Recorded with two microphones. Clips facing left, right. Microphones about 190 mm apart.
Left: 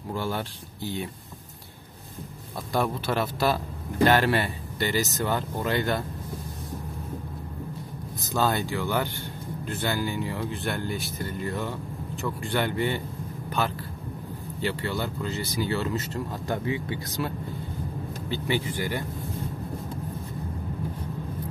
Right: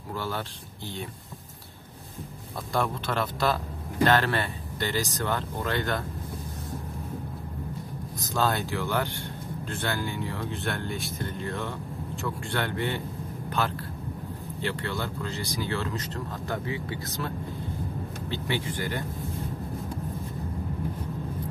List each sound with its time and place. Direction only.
0.1 s speech: 15° left (ahead or behind)
2.7 s speech: 5° left (ahead or behind)
8.3 s speech: centre (ahead or behind)
16.6 s speech: 20° left (ahead or behind)
18.3 s speech: 10° left (ahead or behind)